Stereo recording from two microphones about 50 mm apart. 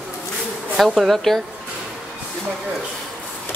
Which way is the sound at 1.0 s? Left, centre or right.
Centre.